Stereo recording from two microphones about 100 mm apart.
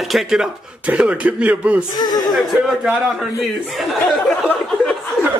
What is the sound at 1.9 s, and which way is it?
Speech, 40° left (ahead or behind).